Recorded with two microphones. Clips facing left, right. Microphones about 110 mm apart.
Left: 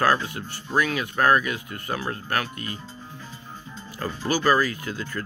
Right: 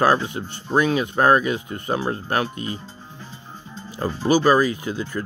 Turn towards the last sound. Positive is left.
turn(degrees=-20)  # may be behind; listen again after turning